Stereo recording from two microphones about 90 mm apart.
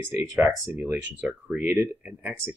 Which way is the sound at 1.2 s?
10° right (ahead or behind).